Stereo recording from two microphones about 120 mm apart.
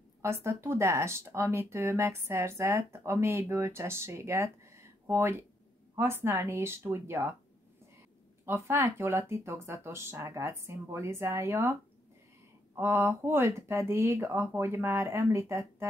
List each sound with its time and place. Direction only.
0.2 s speech: 20° right (ahead or behind)
8.5 s speech: 25° right (ahead or behind)
12.7 s speech: 20° right (ahead or behind)